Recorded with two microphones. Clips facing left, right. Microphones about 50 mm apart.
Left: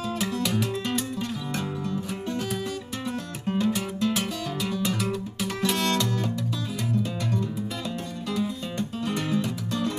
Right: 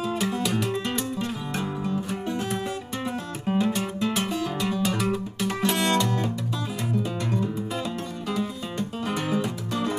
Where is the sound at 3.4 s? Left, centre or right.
Centre.